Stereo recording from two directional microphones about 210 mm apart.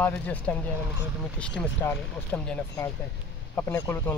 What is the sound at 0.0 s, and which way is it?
A man's voice, 5° left (ahead or behind).